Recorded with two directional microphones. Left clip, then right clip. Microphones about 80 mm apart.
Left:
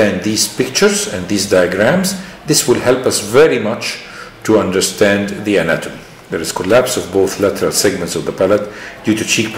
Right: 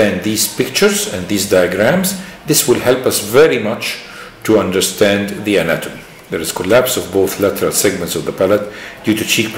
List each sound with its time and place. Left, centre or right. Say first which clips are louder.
0.0 s speech: even; centre